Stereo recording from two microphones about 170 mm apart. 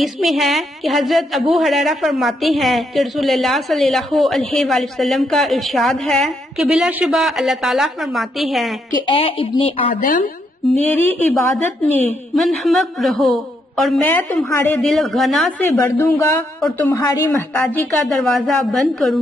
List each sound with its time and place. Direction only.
0.0 s a woman's voice: centre (ahead or behind)
9.0 s a woman's voice: 30° left (ahead or behind)
9.9 s a woman's voice: 55° left (ahead or behind)
10.6 s a woman's voice: centre (ahead or behind)
11.0 s a woman's voice: 10° left (ahead or behind)
12.4 s a woman's voice: centre (ahead or behind)
15.7 s a woman's voice: 15° left (ahead or behind); by 19.1 s centre (ahead or behind)